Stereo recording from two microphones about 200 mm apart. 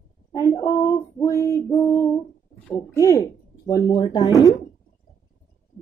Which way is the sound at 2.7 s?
15° left (ahead or behind).